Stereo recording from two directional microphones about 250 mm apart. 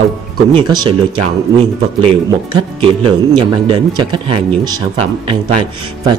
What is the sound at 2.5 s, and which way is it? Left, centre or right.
Speech, centre.